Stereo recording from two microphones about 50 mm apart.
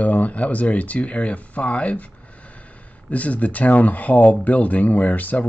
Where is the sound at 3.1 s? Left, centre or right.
Left.